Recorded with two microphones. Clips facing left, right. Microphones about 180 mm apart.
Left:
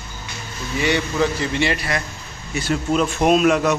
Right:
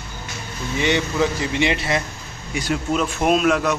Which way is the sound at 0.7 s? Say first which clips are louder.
Even; 20° right (ahead or behind).